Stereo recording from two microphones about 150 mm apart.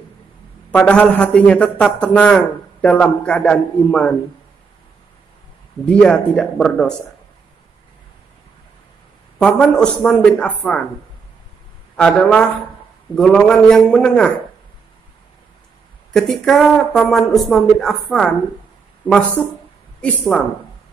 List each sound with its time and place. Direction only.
0.7 s a man's voice: 5° left (ahead or behind)
5.9 s speech: 5° left (ahead or behind)
9.4 s a man's voice: 5° left (ahead or behind)
12.0 s speech: 5° left (ahead or behind)
16.1 s a man's voice: centre (ahead or behind)